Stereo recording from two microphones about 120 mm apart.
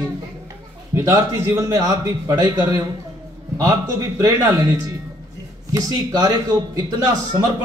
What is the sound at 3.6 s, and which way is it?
A man's voice, 25° right (ahead or behind).